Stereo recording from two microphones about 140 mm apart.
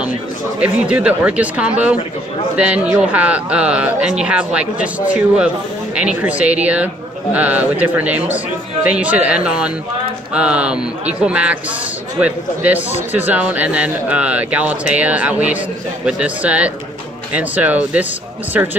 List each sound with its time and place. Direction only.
0.6 s speech: 10° right (ahead or behind)